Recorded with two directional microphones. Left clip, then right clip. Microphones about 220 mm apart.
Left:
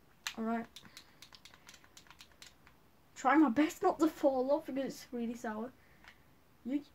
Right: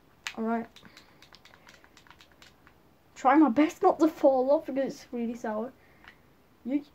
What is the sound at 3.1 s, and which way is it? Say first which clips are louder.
Speech: right 7 dB; 20° left (ahead or behind).